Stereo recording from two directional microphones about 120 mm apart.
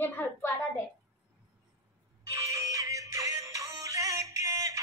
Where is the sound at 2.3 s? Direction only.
25° right (ahead or behind).